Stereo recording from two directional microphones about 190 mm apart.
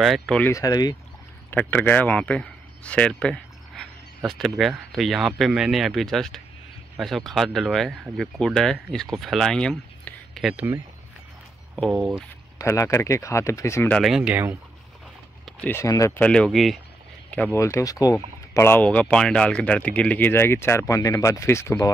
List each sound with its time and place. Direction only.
0.0 s speech: centre (ahead or behind)
0.5 s speech: 20° left (ahead or behind)
1.5 s speech: 10° left (ahead or behind)
12.2 s speech: 15° left (ahead or behind)
13.9 s speech: centre (ahead or behind)
15.4 s speech: 10° left (ahead or behind)
16.3 s speech: 5° left (ahead or behind)